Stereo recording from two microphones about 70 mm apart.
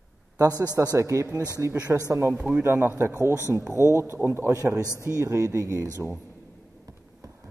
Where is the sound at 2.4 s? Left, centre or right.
Right.